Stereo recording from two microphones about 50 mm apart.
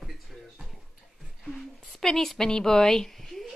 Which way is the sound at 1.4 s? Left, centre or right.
Centre.